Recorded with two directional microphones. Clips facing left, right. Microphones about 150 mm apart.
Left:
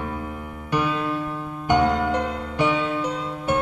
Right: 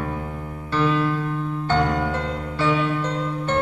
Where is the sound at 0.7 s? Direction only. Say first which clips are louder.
Right 3 dB; 15° left (ahead or behind).